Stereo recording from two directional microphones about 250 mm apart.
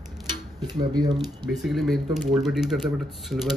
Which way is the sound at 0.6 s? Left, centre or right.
Centre.